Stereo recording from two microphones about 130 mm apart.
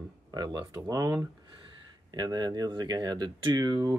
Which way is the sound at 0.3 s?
30° right (ahead or behind).